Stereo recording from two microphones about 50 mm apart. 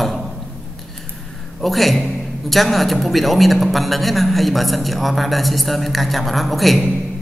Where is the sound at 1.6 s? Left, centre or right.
Centre.